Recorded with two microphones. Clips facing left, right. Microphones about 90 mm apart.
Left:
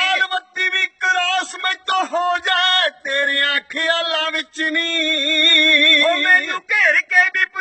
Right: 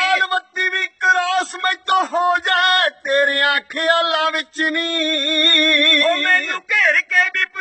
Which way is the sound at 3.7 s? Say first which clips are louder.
Right 4 dB; 50° right (ahead or behind).